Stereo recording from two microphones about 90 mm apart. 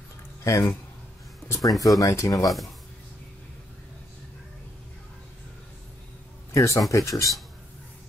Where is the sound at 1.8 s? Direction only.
40° left (ahead or behind).